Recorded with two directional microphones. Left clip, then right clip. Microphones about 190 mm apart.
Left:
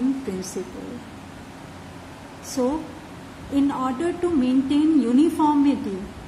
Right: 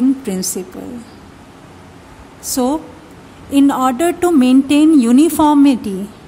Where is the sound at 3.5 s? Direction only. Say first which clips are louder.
Right 10 dB; 55° right (ahead or behind).